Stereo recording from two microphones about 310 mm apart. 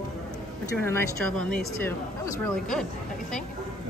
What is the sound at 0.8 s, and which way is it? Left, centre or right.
Speech, centre.